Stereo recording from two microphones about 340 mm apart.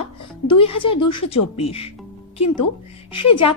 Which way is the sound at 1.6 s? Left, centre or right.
Centre.